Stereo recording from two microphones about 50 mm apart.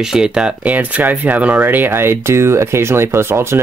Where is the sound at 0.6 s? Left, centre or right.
Right.